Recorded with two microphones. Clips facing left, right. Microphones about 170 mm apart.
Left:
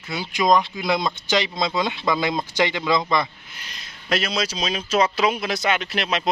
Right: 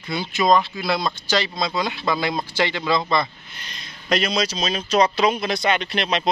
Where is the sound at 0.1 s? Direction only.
10° left (ahead or behind).